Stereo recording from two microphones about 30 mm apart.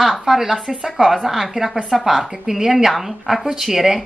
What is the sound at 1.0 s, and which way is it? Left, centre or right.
Speech, right.